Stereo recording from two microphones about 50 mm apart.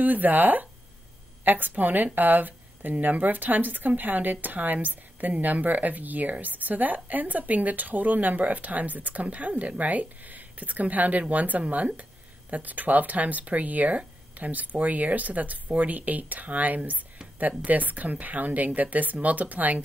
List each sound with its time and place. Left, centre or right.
0.0 s speech: right